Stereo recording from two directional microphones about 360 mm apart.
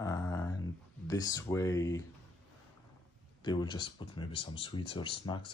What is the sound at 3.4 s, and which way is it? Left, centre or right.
Speech, centre.